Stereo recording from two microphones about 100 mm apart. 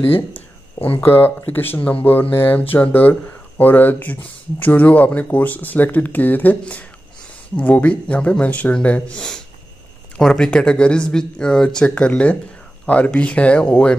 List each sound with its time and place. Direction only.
0.7 s speech: 65° left (ahead or behind)
1.0 s speech: 20° left (ahead or behind)